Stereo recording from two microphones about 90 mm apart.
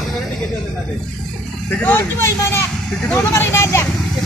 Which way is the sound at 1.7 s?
20° left (ahead or behind).